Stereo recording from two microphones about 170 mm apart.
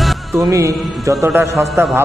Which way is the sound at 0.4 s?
20° right (ahead or behind).